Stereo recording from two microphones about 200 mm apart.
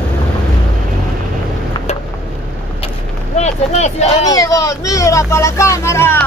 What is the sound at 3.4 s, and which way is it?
Vehicle, 35° left (ahead or behind).